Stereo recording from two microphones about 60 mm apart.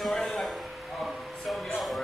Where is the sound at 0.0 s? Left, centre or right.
Centre.